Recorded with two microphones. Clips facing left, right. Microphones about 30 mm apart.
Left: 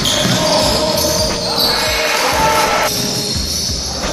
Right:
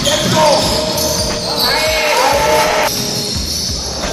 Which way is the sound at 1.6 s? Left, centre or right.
Centre.